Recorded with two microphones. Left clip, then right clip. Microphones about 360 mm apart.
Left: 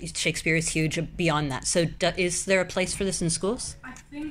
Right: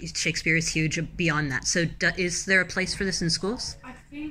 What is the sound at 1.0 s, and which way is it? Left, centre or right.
Speech, centre.